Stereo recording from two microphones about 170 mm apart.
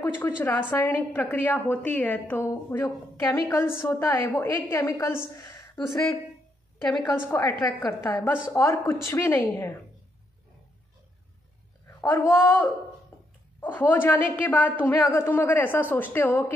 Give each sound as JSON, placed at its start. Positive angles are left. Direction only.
{"t": 0.0, "sound": "a woman's voice", "side_deg": 10}
{"t": 6.8, "sound": "a woman's voice", "side_deg": 5}
{"t": 7.1, "sound": "a woman's voice", "side_deg": 20}
{"t": 12.0, "sound": "a woman's voice", "side_deg": 15}
{"t": 13.1, "sound": "a sound", "side_deg": 15}
{"t": 13.6, "sound": "a woman's voice", "side_deg": 10}